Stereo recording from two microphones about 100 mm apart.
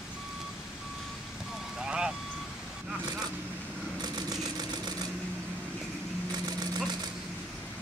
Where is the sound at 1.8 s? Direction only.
10° right (ahead or behind).